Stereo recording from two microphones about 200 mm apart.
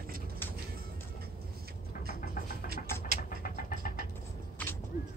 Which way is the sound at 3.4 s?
45° left (ahead or behind).